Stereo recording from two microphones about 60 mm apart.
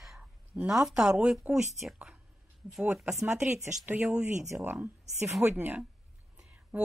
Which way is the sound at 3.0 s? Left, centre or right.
Centre.